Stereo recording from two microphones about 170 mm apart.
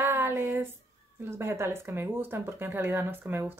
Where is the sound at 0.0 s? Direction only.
15° right (ahead or behind).